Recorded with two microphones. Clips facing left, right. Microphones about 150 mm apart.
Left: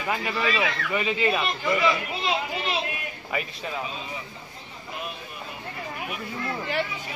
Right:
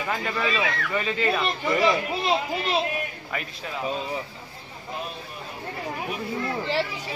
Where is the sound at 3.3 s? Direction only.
5° left (ahead or behind).